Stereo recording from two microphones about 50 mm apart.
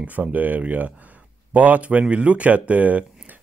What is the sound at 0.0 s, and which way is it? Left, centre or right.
Speech, right.